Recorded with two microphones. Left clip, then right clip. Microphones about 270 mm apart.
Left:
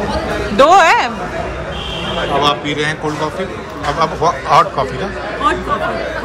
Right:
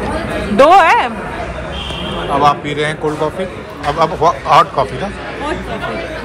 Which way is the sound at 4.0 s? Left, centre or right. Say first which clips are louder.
Right 3 dB; centre.